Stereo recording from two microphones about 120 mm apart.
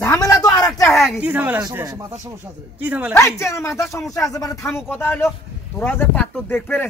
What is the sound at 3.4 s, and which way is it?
A man's voice, 25° left (ahead or behind).